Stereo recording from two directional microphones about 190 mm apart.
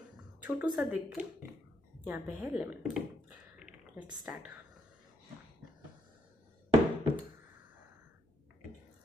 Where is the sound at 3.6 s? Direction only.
5° right (ahead or behind).